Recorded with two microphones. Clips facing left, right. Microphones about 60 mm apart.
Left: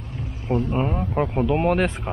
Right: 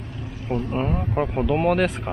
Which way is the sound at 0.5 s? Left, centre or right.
Left.